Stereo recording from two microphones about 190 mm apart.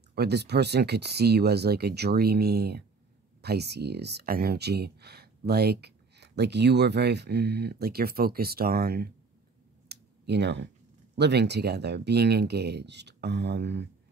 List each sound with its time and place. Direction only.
0.1 s speech: 60° right (ahead or behind)
9.8 s a sound: 65° right (ahead or behind)
11.1 s speech: 60° right (ahead or behind)